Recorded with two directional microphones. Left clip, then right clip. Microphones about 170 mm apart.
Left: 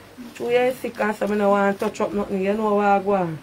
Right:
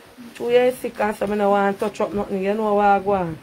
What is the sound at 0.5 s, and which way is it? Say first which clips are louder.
Speech: right 3 dB; 20° right (ahead or behind).